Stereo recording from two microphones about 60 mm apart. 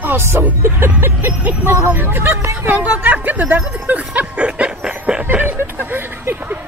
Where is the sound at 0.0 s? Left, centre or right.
Right.